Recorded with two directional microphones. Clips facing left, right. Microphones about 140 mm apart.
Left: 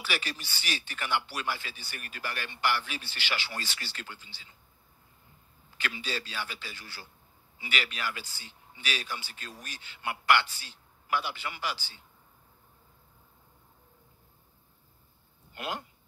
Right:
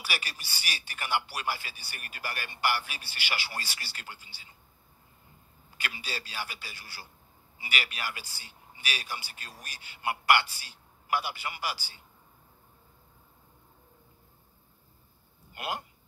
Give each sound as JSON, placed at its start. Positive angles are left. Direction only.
{"t": 0.0, "sound": "speech", "side_deg": -10}
{"t": 5.8, "sound": "speech", "side_deg": -10}
{"t": 15.5, "sound": "speech", "side_deg": -10}